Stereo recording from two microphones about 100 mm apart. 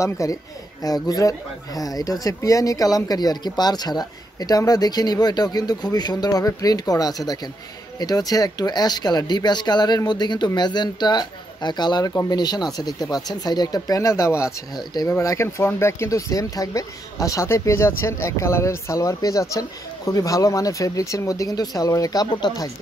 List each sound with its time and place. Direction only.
0.0 s speech: 30° left (ahead or behind)
12.1 s speech: 30° left (ahead or behind)
12.4 s speech: 40° left (ahead or behind)